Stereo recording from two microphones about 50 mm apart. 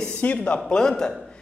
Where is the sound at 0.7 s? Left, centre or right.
Centre.